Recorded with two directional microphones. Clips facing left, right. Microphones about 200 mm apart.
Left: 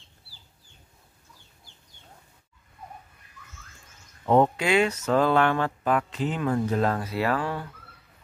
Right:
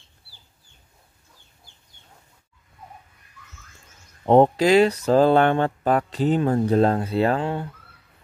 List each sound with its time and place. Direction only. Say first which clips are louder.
4.3 s speech: right 6 dB; 35° right (ahead or behind)